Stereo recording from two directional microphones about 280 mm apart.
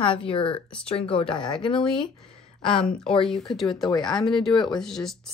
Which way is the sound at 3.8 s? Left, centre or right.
Centre.